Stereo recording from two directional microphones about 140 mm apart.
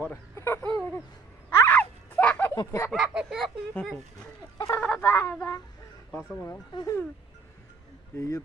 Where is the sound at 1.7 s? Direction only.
10° left (ahead or behind).